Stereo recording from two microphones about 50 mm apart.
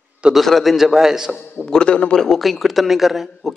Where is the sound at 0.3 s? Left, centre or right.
Centre.